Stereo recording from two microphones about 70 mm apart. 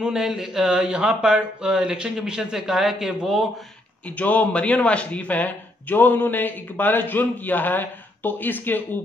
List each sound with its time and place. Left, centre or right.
0.0 s speech: centre
4.2 s speech: left